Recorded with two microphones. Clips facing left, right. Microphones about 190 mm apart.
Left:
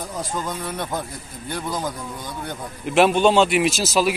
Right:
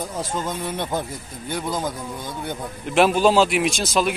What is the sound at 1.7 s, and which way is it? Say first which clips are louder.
Speech: even; centre (ahead or behind).